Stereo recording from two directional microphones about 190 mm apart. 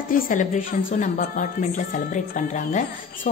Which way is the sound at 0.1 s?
45° left (ahead or behind).